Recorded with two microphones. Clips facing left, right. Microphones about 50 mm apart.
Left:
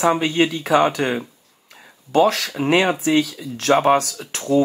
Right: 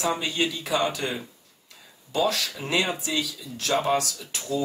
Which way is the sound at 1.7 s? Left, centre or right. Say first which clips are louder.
Left 6 dB; left.